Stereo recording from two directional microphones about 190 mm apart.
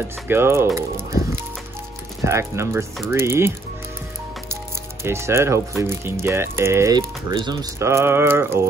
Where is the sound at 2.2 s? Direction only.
15° right (ahead or behind).